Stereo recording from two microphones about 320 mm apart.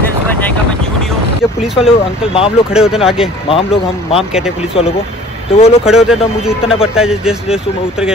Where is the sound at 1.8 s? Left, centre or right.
Centre.